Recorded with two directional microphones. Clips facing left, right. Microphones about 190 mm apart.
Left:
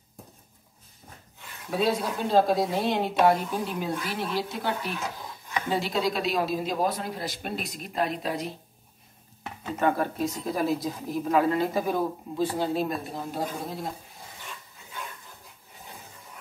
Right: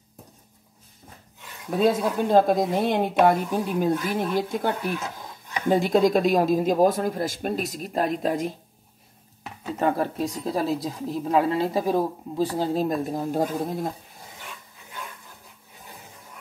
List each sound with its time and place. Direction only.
1.8 s a woman's voice: 50° right (ahead or behind)
9.8 s speech: 30° right (ahead or behind)